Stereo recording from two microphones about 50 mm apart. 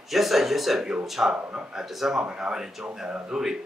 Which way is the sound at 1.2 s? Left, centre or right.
Centre.